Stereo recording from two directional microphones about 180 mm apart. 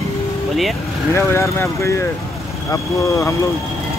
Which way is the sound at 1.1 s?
15° left (ahead or behind).